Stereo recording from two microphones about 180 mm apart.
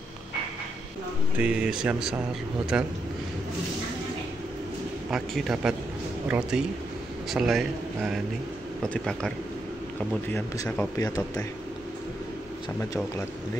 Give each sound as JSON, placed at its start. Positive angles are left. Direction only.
{"t": 1.4, "sound": "a man's voice", "side_deg": -5}
{"t": 5.1, "sound": "a man's voice", "side_deg": 0}
{"t": 10.3, "sound": "a man's voice", "side_deg": 15}